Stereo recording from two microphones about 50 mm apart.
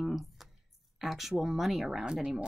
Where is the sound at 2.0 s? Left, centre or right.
Centre.